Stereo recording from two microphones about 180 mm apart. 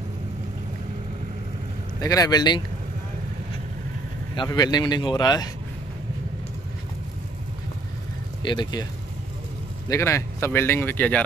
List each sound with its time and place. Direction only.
2.0 s a man's voice: 20° left (ahead or behind)
4.4 s a man's voice: 20° left (ahead or behind)
8.4 s speech: 25° left (ahead or behind)
9.8 s speech: 15° left (ahead or behind)